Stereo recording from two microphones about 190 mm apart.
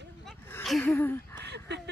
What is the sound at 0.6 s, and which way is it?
Speech, centre (ahead or behind).